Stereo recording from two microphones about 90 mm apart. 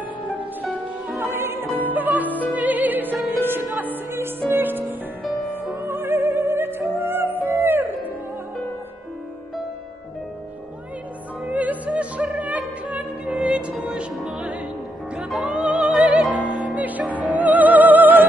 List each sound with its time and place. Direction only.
0.7 s music: centre (ahead or behind)
1.2 s music: 25° right (ahead or behind)
2.2 s music: 20° left (ahead or behind)
2.5 s music: 20° right (ahead or behind)
4.8 s music: centre (ahead or behind)
5.8 s music: 25° right (ahead or behind)
11.4 s music: 15° right (ahead or behind)
17.4 s music: 15° right (ahead or behind)